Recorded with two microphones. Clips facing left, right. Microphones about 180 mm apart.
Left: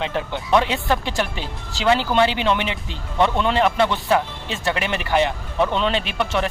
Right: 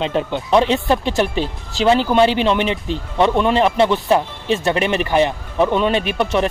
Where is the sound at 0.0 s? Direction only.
20° right (ahead or behind).